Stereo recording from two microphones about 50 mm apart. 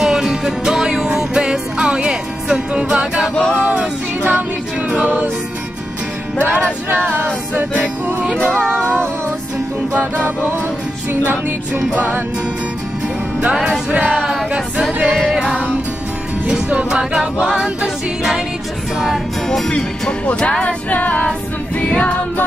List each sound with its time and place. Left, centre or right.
0.0 s music: centre
13.7 s female singing: centre
15.0 s music: centre
16.4 s music: right
19.7 s music: left